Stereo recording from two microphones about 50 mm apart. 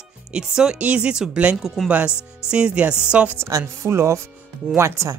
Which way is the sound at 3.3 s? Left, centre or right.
Right.